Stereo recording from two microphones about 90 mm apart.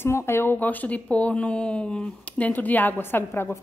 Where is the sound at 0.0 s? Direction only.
30° left (ahead or behind).